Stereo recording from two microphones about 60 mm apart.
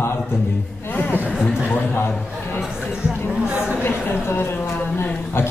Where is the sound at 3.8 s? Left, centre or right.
Left.